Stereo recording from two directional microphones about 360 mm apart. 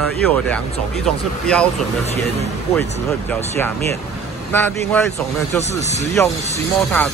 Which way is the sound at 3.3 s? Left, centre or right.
Centre.